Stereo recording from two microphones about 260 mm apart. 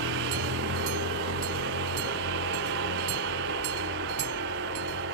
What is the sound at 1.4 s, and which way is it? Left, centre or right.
Train, right.